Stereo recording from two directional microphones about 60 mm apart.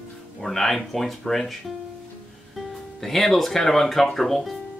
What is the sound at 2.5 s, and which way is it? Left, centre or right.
Speech, centre.